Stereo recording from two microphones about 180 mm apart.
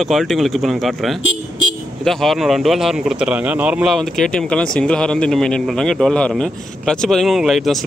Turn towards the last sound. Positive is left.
turn(degrees=0)  # may be behind; listen again after turning